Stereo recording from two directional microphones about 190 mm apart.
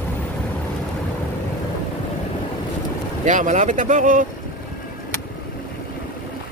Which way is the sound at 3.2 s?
40° right (ahead or behind).